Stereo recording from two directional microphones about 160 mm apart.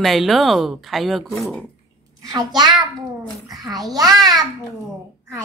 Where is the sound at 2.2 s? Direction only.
25° right (ahead or behind).